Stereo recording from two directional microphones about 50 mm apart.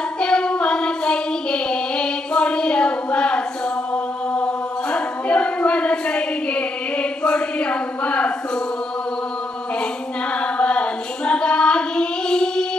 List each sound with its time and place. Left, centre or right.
0.2 s child singing: centre
3.9 s chant: left
4.9 s a sound: left
10.4 s child singing: left